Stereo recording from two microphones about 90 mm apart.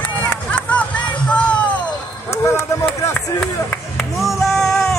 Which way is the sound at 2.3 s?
30° left (ahead or behind).